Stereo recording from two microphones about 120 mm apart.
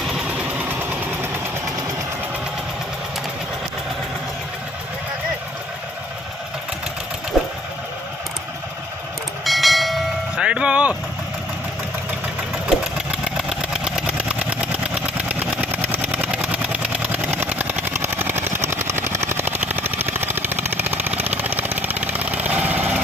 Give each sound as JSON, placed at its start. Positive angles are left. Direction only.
{"t": 0.0, "sound": "vehicle", "side_deg": -5}
{"t": 0.7, "sound": "vehicle", "side_deg": -15}
{"t": 7.3, "sound": "sewing machine", "side_deg": -5}
{"t": 9.4, "sound": "train", "side_deg": 0}
{"t": 12.6, "sound": "engine", "side_deg": -5}
{"t": 20.9, "sound": "vehicle", "side_deg": -15}